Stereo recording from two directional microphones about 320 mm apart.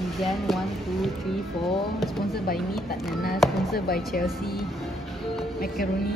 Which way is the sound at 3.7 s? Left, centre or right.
Left.